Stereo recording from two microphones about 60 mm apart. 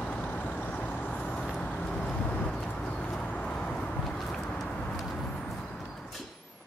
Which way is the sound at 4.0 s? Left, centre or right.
Centre.